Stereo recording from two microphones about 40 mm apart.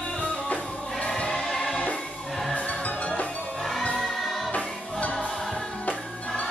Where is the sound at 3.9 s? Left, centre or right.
Centre.